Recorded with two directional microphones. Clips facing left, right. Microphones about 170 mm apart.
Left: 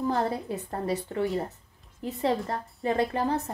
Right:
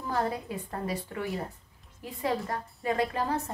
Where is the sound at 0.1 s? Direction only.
30° left (ahead or behind).